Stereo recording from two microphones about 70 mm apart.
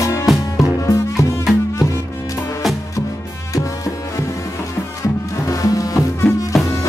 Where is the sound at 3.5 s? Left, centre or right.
Left.